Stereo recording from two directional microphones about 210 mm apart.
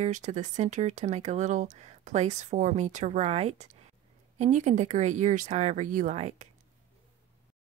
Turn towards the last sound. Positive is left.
turn(degrees=-30)  # may be behind; listen again after turning